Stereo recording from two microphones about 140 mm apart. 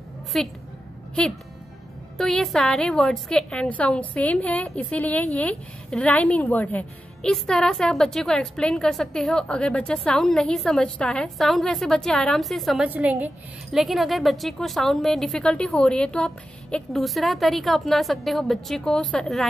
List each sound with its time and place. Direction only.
0.3 s a woman's voice: centre (ahead or behind)
2.1 s a woman's voice: centre (ahead or behind)